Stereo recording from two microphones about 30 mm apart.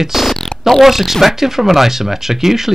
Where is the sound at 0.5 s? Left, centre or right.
Left.